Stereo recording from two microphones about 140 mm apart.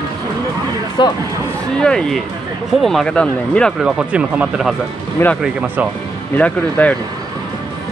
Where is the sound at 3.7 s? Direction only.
5° right (ahead or behind).